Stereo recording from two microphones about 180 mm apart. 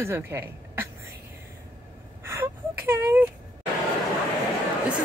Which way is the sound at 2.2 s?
15° right (ahead or behind).